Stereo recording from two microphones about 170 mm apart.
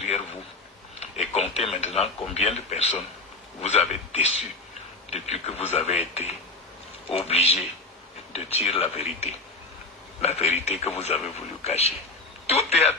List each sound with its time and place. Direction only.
1.1 s a man's voice: 40° left (ahead or behind)